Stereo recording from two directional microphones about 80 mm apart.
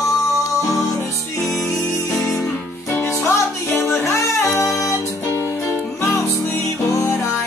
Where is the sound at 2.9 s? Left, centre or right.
Left.